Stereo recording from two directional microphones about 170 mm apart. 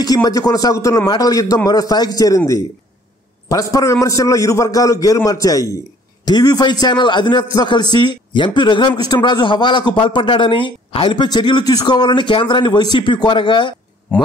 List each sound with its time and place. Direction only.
0.0 s speech: 20° left (ahead or behind)